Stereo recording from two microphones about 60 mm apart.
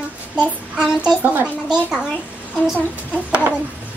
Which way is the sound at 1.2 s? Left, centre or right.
Right.